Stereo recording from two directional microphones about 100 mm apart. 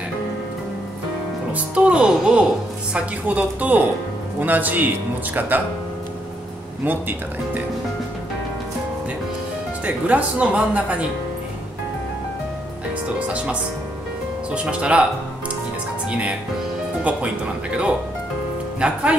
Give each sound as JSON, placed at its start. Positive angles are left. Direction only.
{"t": 1.5, "sound": "speech", "side_deg": -10}
{"t": 6.8, "sound": "speech", "side_deg": -20}
{"t": 9.8, "sound": "speech", "side_deg": -15}
{"t": 14.5, "sound": "speech", "side_deg": -10}
{"t": 16.1, "sound": "speech", "side_deg": -10}